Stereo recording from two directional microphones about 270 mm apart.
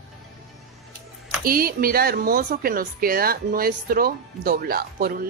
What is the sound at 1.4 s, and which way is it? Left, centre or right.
Speech, right.